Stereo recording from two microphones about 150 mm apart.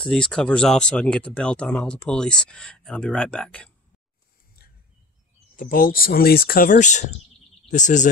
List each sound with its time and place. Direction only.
0.0 s speech: 5° left (ahead or behind)
4.6 s a sound: 90° left
5.6 s speech: 70° left (ahead or behind); by 8.1 s 55° left (ahead or behind)